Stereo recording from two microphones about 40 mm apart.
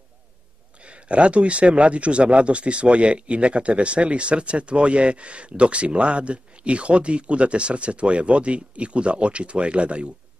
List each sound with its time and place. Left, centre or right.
0.7 s speech: right